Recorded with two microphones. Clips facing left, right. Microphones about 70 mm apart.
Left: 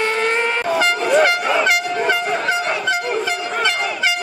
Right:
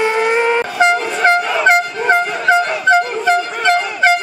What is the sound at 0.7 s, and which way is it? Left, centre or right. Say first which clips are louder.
Vehicle: right 1 dB; right.